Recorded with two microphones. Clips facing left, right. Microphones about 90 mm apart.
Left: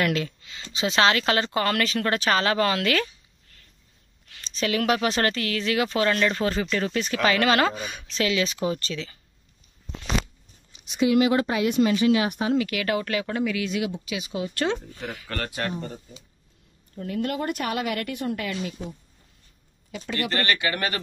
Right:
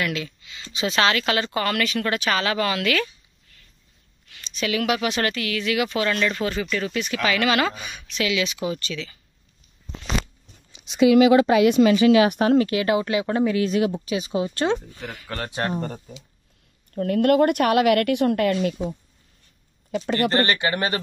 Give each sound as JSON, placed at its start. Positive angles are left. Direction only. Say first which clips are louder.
{"t": 0.0, "sound": "speech", "louder": "left 2 dB", "side_deg": 45}
{"t": 4.3, "sound": "speech", "louder": "even", "side_deg": 35}
{"t": 10.7, "sound": "speech", "louder": "right 5 dB", "side_deg": -90}
{"t": 12.5, "sound": "speech", "louder": "right 5 dB", "side_deg": -30}
{"t": 13.4, "sound": "speech", "louder": "right 8 dB", "side_deg": -35}
{"t": 15.0, "sound": "speech", "louder": "left 1 dB", "side_deg": 0}
{"t": 15.2, "sound": "speech", "louder": "right 2 dB", "side_deg": -15}
{"t": 15.7, "sound": "a woman's voice", "louder": "right 5 dB", "side_deg": -50}
{"t": 19.9, "sound": "speech", "louder": "right 7 dB", "side_deg": -40}